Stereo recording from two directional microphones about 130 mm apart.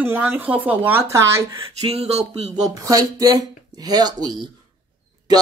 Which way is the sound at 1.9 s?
50° right (ahead or behind).